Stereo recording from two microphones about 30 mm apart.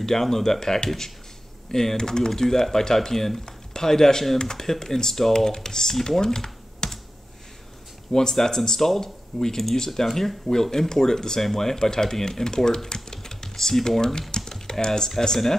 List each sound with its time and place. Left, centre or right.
0.0 s speech: centre
8.1 s speech: centre